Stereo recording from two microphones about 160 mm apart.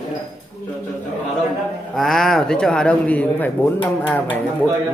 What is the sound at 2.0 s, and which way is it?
A man's voice, centre (ahead or behind).